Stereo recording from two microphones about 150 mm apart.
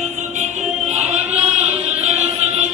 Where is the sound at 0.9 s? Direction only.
50° right (ahead or behind).